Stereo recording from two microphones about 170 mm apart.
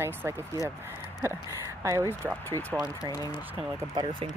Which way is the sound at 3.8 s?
30° right (ahead or behind).